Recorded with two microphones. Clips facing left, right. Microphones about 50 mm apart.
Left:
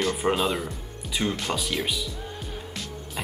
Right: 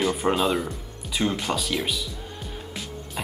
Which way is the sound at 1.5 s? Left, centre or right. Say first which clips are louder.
Right 1 dB; centre.